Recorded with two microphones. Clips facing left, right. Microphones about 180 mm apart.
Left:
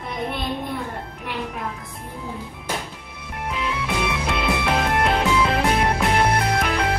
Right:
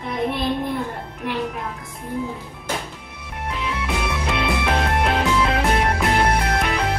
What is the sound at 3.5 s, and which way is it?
Music, centre (ahead or behind).